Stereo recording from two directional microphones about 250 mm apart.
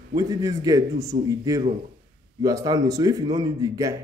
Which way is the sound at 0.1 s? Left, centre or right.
Centre.